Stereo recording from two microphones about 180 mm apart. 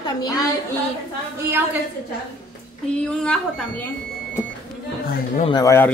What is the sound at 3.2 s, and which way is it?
Speech, 5° left (ahead or behind).